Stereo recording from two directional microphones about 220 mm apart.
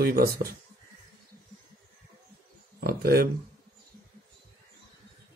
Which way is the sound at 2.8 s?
45° right (ahead or behind).